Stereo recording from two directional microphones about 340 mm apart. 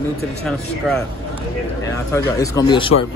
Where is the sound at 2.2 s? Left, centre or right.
Centre.